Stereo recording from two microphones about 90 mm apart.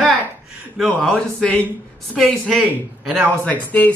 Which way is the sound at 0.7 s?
5° left (ahead or behind).